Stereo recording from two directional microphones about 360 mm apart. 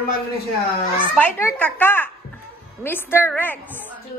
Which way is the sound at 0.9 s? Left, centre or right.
Centre.